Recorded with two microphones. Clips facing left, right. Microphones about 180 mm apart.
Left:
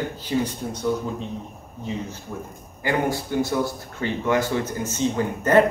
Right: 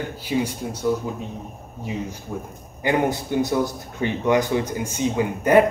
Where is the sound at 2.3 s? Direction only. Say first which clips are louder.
Right 2 dB; 10° right (ahead or behind).